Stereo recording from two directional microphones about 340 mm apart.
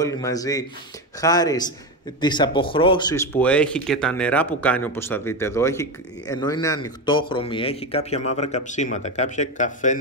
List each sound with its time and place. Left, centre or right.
0.0 s a man's voice: centre